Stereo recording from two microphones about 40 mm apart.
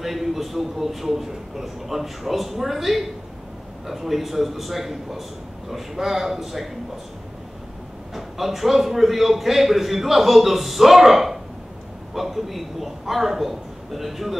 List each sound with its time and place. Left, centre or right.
0.0 s a man's voice: centre
8.1 s a man's voice: centre